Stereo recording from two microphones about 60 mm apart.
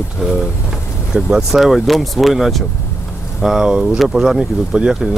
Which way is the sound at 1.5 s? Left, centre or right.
Centre.